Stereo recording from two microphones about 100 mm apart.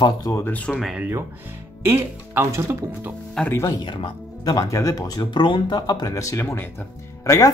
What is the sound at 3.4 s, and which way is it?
Speech, 25° left (ahead or behind).